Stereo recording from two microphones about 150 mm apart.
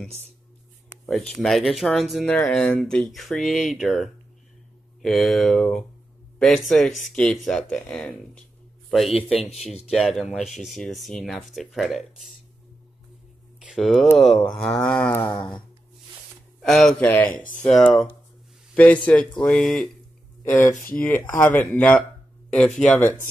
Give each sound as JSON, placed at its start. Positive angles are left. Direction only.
{"t": 1.0, "sound": "speech", "side_deg": 5}
{"t": 2.2, "sound": "speech", "side_deg": 10}
{"t": 9.8, "sound": "speech", "side_deg": 0}
{"t": 13.6, "sound": "a sound", "side_deg": 0}
{"t": 14.4, "sound": "speech", "side_deg": 5}
{"t": 16.6, "sound": "speech", "side_deg": 5}
{"t": 17.3, "sound": "speech", "side_deg": 65}
{"t": 17.6, "sound": "speech", "side_deg": 5}
{"t": 20.4, "sound": "speech", "side_deg": 15}